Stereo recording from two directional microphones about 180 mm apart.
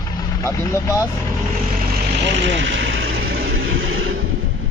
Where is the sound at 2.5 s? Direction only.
85° right.